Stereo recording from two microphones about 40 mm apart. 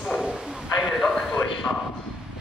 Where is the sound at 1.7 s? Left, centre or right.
Left.